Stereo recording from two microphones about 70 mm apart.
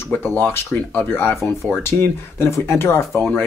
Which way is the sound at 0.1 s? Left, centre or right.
Left.